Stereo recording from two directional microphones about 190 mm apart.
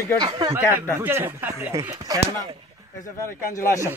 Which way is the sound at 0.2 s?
20° right (ahead or behind).